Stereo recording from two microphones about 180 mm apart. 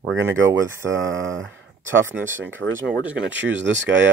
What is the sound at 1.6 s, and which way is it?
Speech, 10° right (ahead or behind).